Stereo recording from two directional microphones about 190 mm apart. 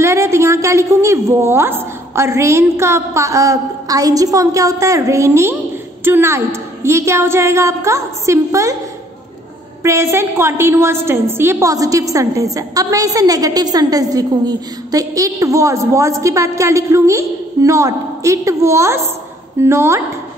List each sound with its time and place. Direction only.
0.0 s a woman's voice: 15° right (ahead or behind)
9.8 s a woman's voice: 15° right (ahead or behind)